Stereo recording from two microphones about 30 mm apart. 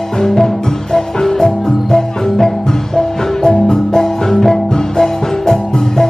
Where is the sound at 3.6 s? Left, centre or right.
Centre.